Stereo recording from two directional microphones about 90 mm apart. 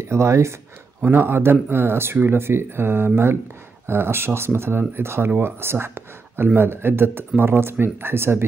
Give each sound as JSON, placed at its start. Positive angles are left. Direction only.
{"t": 0.0, "sound": "speech", "side_deg": -30}